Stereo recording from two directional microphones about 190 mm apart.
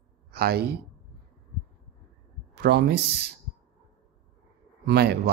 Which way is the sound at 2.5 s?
60° right (ahead or behind).